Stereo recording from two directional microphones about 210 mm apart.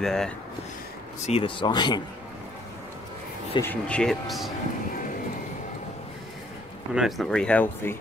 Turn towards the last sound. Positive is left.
turn(degrees=10)  # may be behind; listen again after turning